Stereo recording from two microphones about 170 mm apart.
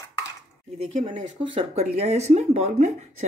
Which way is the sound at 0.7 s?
35° right (ahead or behind).